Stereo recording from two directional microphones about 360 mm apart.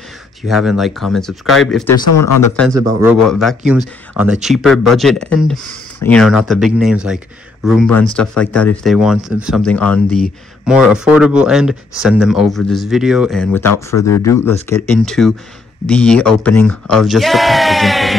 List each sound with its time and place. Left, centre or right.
0.4 s speech: centre
2.0 s speech: left
2.7 s speech: centre